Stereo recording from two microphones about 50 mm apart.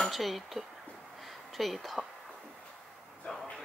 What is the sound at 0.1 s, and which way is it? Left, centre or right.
Speech, centre.